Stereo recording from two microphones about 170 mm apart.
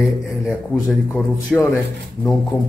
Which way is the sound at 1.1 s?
10° left (ahead or behind).